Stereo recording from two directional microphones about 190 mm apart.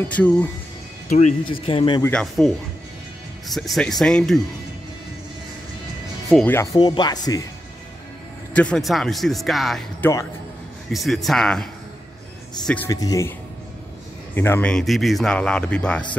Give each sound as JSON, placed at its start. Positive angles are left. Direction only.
{"t": 0.1, "sound": "speech", "side_deg": 10}
{"t": 1.1, "sound": "speech", "side_deg": 40}
{"t": 2.0, "sound": "speech", "side_deg": 10}
{"t": 3.4, "sound": "speech", "side_deg": 0}
{"t": 6.2, "sound": "speech", "side_deg": 0}
{"t": 6.5, "sound": "speech", "side_deg": 20}
{"t": 8.5, "sound": "speech", "side_deg": 5}
{"t": 14.3, "sound": "speech", "side_deg": 10}